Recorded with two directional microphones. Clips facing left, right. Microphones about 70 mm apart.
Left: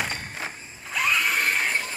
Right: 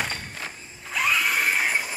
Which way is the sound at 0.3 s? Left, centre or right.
Left.